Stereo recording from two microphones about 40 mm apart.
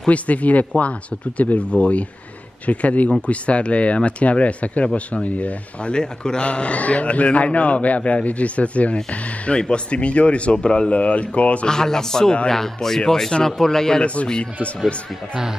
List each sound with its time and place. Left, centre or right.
0.1 s a man's voice: left
5.9 s a man's voice: left
11.6 s speech: centre
14.0 s a man's voice: left